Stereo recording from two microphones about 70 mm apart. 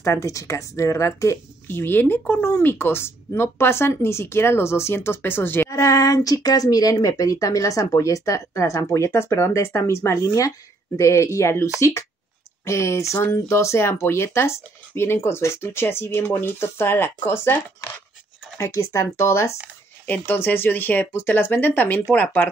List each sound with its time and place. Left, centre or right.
0.0 s a woman's voice: left
1.7 s speech: left
5.7 s a woman's voice: left
10.2 s speech: left
11.0 s a woman's voice: left
18.6 s a woman's voice: left
20.1 s speech: left